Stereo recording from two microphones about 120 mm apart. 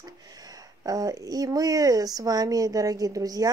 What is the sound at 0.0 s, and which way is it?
Speech, 30° right (ahead or behind).